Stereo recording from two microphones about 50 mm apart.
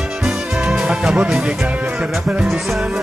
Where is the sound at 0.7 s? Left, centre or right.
Centre.